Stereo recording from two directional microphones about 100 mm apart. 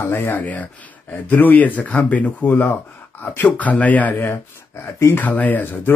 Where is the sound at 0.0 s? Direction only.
25° left (ahead or behind).